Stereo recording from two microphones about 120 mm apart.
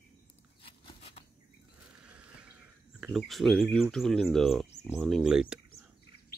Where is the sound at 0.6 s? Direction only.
50° left (ahead or behind).